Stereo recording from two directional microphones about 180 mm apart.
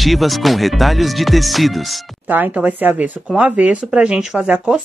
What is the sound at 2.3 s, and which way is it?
Speech, 10° right (ahead or behind).